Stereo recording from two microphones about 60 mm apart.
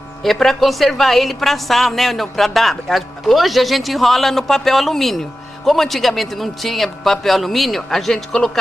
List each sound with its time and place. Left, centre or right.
0.2 s a woman's voice: centre